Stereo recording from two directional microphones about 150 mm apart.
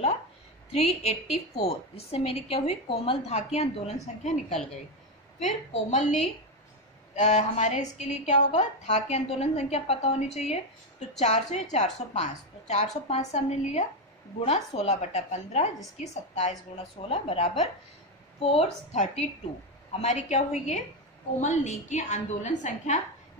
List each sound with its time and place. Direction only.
0.7 s a woman's voice: 45° left (ahead or behind)
7.2 s a woman's voice: 50° left (ahead or behind)